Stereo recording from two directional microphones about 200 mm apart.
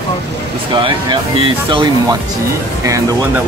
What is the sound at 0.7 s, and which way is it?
Speech, 25° right (ahead or behind).